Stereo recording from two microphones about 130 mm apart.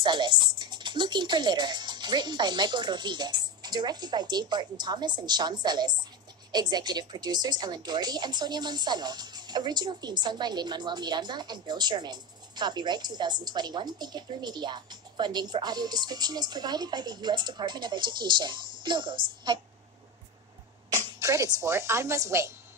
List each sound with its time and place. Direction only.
0.0 s speech: 35° right (ahead or behind)
20.9 s speech: 25° right (ahead or behind)